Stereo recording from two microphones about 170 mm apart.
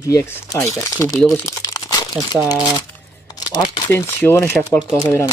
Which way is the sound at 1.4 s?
20° left (ahead or behind).